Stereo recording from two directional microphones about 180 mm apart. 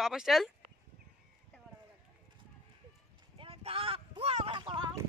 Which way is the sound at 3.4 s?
30° right (ahead or behind).